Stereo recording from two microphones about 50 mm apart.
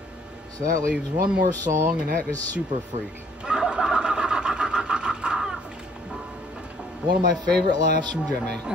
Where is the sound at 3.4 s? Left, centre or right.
Centre.